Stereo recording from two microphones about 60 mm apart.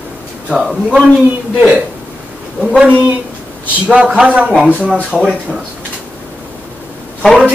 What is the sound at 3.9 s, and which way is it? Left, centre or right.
A man's voice, centre.